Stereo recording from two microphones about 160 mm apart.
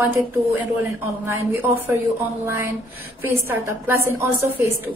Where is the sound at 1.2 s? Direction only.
15° right (ahead or behind).